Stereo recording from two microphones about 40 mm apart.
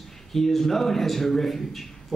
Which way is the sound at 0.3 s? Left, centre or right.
Centre.